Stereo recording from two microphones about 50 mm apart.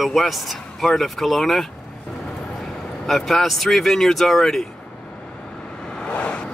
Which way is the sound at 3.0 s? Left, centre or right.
Centre.